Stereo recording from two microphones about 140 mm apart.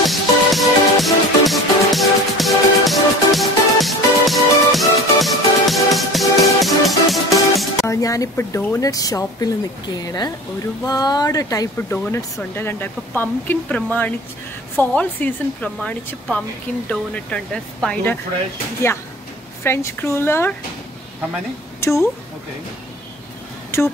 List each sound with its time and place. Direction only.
0.0 s music: centre (ahead or behind)
7.8 s speech: 25° left (ahead or behind)
12.0 s speech: 15° left (ahead or behind)
19.6 s speech: 15° left (ahead or behind)
21.7 s a sound: 20° left (ahead or behind)